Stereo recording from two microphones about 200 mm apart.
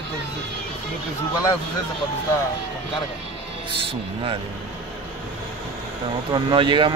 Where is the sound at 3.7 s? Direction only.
25° right (ahead or behind).